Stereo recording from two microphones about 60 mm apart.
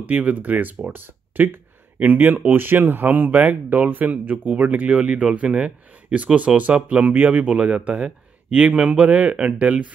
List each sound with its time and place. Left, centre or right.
0.0 s speech: right